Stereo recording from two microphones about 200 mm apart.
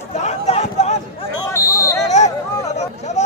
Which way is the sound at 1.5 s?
15° left (ahead or behind).